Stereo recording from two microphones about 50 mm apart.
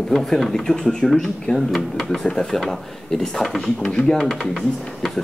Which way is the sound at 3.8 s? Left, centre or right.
Centre.